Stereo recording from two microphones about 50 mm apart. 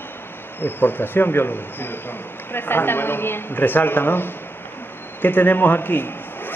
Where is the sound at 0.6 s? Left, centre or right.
Left.